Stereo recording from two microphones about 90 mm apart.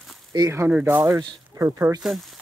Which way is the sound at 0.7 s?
20° right (ahead or behind).